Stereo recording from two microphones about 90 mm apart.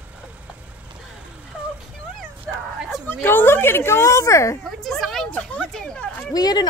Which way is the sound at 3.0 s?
20° left (ahead or behind).